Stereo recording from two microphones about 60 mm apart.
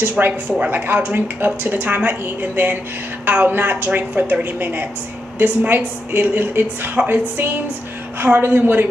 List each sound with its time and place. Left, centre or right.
0.2 s a woman's voice: centre